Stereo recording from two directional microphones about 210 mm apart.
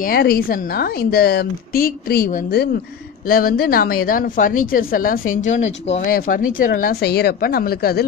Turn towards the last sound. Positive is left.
turn(degrees=50)  # may be behind; listen again after turning